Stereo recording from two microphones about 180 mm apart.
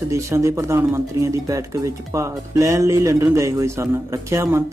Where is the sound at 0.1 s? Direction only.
15° right (ahead or behind).